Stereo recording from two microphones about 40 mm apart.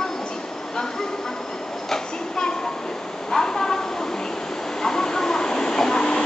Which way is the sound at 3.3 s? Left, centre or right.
Centre.